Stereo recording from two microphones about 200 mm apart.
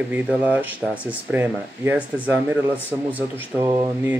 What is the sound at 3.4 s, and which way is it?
Speech, 15° right (ahead or behind).